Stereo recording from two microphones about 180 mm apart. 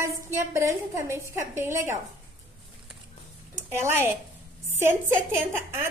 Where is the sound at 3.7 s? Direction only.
15° right (ahead or behind).